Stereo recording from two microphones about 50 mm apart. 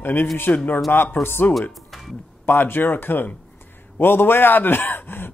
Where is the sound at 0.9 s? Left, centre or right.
Left.